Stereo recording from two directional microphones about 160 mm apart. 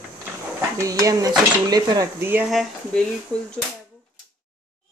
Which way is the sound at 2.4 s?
Centre (ahead or behind).